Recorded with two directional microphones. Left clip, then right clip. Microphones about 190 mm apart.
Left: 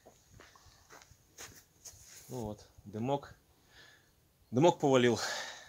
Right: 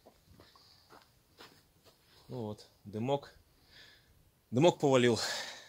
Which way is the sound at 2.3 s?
65° right (ahead or behind).